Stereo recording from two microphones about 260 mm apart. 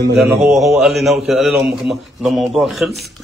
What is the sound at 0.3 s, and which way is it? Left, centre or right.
Speech, centre.